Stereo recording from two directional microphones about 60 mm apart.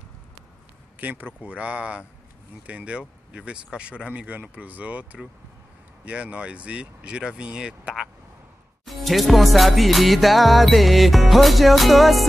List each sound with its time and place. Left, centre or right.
0.9 s speech: right; by 8.1 s centre
8.8 s music: centre